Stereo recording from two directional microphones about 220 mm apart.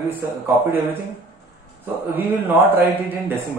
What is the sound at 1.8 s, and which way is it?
A man's voice, 10° right (ahead or behind).